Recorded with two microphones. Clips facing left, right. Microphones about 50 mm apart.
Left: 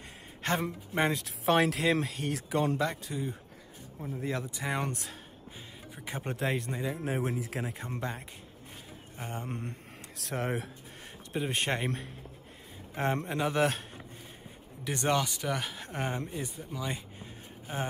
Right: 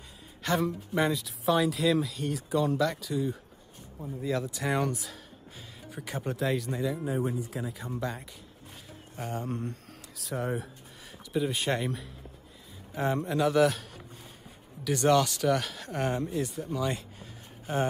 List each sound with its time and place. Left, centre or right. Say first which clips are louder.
0.4 s a sound: right 3 dB; left
0.7 s speech: right 2 dB; left
1.2 s speech: even; left
2.0 s speech: right 2 dB; left
2.8 s speech: right 4 dB; left
4.9 s speech: right 2 dB; left
7.2 s speech: right 1 dB; left
8.0 s speech: right 2 dB; left
10.2 s speech: right 1 dB; left
11.1 s speech: right 4 dB; left
12.9 s speech: right 2 dB; left
15.1 s speech: right 6 dB; centre
16.6 s speech: right 6 dB; centre